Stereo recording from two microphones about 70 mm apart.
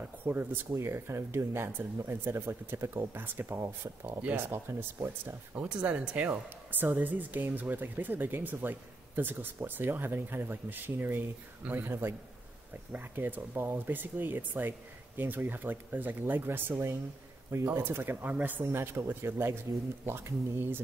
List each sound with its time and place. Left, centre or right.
0.0 s speech: right
5.6 s speech: centre; by 20.8 s right